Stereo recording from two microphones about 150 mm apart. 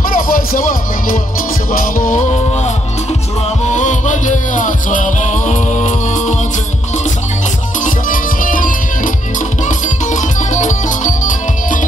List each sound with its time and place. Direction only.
0.1 s music: 70° left (ahead or behind)
2.3 s music: 45° left (ahead or behind)
7.8 s music: 65° left (ahead or behind)